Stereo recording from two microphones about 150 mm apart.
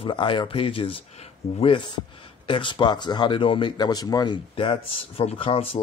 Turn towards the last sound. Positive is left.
turn(degrees=40)  # may be behind; listen again after turning